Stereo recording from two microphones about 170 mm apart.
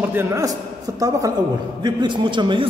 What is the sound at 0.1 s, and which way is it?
A man's voice, 15° right (ahead or behind).